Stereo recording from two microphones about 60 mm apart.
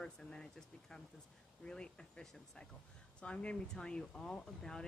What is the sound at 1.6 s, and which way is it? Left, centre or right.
Speech, centre.